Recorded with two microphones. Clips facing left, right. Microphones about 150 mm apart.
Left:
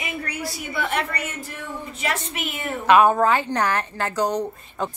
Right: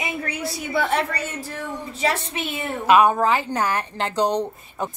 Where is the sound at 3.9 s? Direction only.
20° right (ahead or behind).